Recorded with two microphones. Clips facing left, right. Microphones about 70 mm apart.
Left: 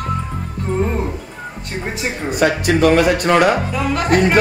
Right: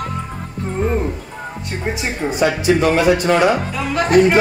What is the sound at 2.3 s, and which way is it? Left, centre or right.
Speech, left.